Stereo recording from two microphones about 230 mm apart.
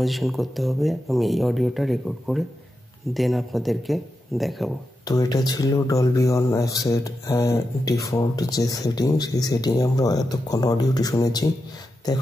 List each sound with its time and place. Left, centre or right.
0.0 s speech: centre
5.0 s speech: centre